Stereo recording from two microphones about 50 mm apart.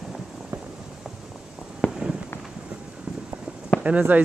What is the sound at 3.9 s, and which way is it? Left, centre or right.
Speech, right.